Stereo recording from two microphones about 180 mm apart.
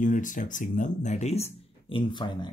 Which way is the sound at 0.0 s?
45° left (ahead or behind).